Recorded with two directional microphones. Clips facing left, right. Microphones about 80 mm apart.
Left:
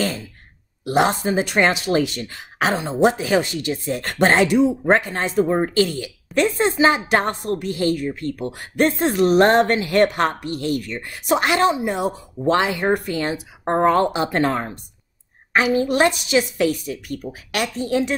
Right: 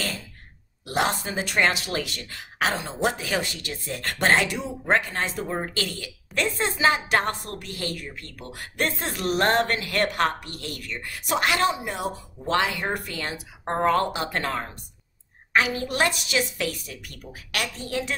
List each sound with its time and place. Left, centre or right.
0.8 s a woman's voice: left